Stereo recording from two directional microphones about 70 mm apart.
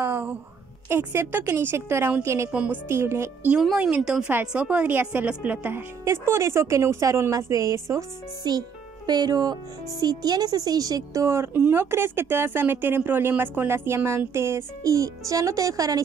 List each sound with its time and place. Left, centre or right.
0.8 s a woman's voice: right
2.5 s speech: centre
2.9 s speech: right
3.5 s a woman's voice: centre; by 5.9 s right
6.0 s a woman's voice: right
8.5 s speech: right
11.2 s speech: right